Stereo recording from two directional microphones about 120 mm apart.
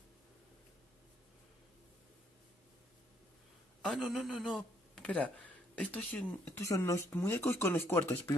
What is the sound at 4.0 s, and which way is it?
Speech, 5° right (ahead or behind).